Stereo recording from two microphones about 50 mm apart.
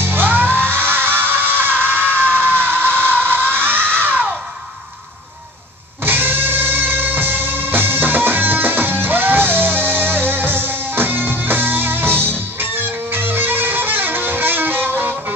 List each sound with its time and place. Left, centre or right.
0.0 s music: right
1.2 s screaming: right
6.0 s music: right